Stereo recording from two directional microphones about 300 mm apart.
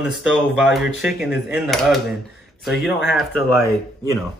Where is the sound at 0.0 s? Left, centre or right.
Centre.